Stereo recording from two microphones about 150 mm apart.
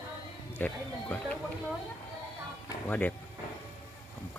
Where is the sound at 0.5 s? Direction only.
10° left (ahead or behind).